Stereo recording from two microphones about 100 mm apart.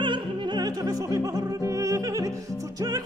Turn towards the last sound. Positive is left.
turn(degrees=-35)  # may be behind; listen again after turning